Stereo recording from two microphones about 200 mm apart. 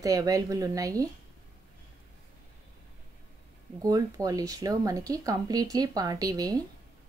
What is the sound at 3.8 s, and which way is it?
Speech, 20° right (ahead or behind).